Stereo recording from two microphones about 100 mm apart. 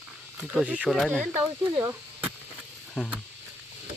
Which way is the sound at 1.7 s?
25° right (ahead or behind).